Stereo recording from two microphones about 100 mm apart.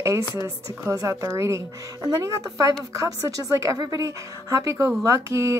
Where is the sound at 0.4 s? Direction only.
30° right (ahead or behind).